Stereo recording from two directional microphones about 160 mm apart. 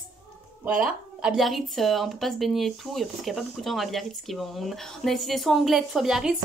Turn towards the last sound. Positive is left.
turn(degrees=0)  # may be behind; listen again after turning